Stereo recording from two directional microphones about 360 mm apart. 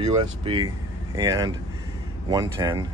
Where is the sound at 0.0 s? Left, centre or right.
Centre.